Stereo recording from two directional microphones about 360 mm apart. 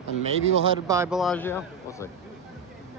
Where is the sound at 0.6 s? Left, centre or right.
Centre.